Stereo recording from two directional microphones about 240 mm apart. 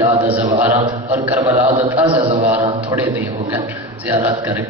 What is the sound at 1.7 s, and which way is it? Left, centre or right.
Speech, right.